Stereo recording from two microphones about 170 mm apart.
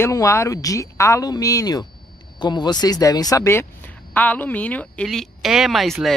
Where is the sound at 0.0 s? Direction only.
15° left (ahead or behind).